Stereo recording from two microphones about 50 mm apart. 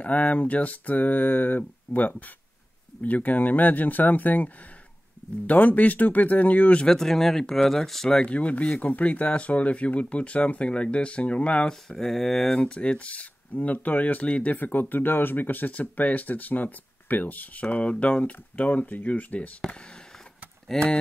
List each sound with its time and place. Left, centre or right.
0.0 s speech: left
5.5 s speech: left
6.8 s speech: centre
8.1 s speech: left
12.5 s speech: centre
19.7 s speech: centre
20.7 s speech: centre